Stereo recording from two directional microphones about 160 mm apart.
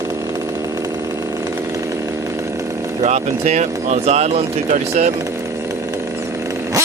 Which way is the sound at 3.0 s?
45° right (ahead or behind).